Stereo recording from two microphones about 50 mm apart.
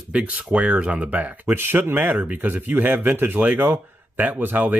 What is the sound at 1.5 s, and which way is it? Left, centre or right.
A man's voice, right.